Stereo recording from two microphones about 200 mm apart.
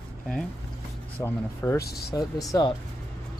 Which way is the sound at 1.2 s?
10° left (ahead or behind).